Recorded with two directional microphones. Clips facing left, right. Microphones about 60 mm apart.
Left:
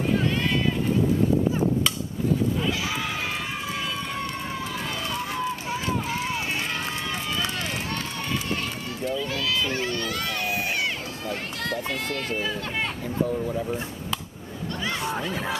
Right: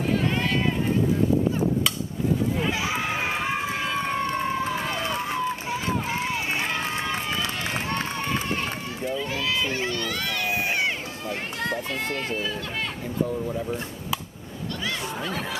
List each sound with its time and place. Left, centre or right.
2.6 s run: right
12.4 s speech: centre
13.5 s speech: centre
15.2 s speech: centre